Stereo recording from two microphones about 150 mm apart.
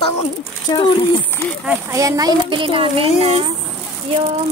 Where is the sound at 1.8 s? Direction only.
20° right (ahead or behind); by 3.5 s 40° right (ahead or behind).